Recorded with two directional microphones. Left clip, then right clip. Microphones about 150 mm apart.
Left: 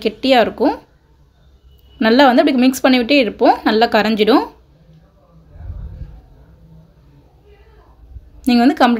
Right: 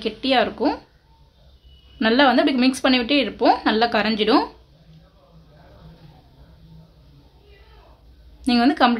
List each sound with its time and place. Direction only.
0.0 s speech: 35° left (ahead or behind)
2.0 s speech: 25° left (ahead or behind)
8.5 s speech: 25° left (ahead or behind)